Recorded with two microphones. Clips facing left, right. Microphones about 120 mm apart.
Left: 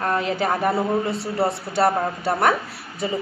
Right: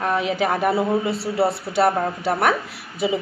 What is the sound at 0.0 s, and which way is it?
A woman's voice, 5° right (ahead or behind).